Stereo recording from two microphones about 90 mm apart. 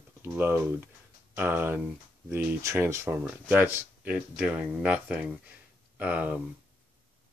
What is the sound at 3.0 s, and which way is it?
Speech, 20° right (ahead or behind).